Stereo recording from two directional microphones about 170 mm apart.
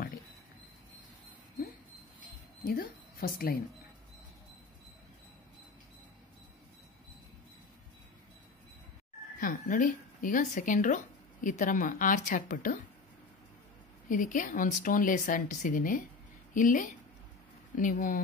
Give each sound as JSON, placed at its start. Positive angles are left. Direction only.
{"t": 2.6, "sound": "speech", "side_deg": 60}
{"t": 9.4, "sound": "speech", "side_deg": 50}
{"t": 14.0, "sound": "speech", "side_deg": 50}